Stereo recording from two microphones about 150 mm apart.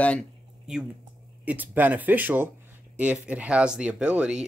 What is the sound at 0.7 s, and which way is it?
Speech, 5° right (ahead or behind).